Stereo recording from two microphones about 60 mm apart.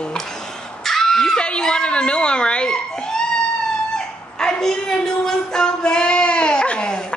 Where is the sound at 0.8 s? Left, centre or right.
Centre.